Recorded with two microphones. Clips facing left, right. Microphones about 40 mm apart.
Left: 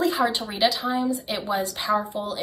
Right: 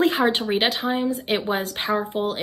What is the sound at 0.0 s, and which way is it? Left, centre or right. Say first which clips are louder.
Speech: right 3 dB; right.